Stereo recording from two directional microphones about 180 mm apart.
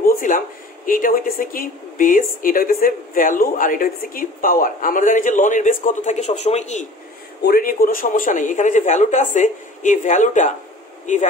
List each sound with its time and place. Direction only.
0.0 s a sound: 50° left (ahead or behind)
0.8 s speech: 50° left (ahead or behind)
7.4 s speech: 55° left (ahead or behind)